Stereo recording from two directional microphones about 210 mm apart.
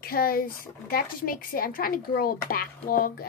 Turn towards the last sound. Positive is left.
turn(degrees=45)  # may be behind; listen again after turning